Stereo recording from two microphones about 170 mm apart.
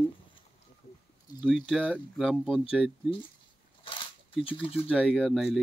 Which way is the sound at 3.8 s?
30° left (ahead or behind).